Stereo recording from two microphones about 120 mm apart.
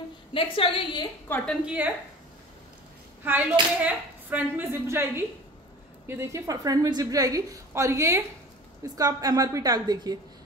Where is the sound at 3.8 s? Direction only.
15° right (ahead or behind).